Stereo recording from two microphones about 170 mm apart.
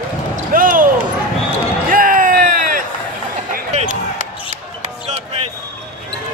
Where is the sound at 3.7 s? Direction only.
45° right (ahead or behind).